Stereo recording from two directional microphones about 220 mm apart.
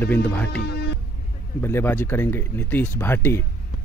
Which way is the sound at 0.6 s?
50° left (ahead or behind).